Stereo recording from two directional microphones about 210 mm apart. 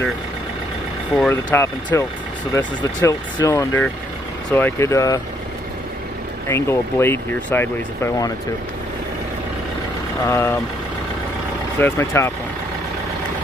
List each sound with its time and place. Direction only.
1.1 s speech: 5° left (ahead or behind)
6.5 s speech: 10° left (ahead or behind)
10.2 s speech: 10° left (ahead or behind)
11.8 s speech: 10° left (ahead or behind)